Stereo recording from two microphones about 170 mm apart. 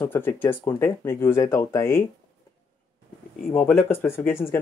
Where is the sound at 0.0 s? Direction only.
15° left (ahead or behind).